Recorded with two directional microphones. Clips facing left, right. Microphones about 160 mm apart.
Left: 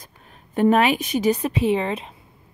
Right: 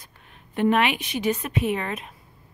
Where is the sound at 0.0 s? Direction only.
40° left (ahead or behind).